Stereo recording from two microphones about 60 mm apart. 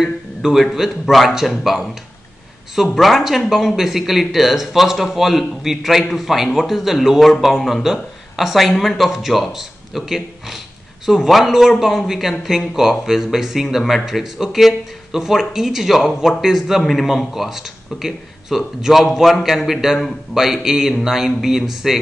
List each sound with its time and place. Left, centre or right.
0.0 s speech: centre